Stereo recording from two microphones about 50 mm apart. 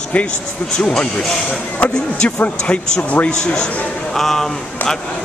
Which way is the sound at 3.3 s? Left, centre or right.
Centre.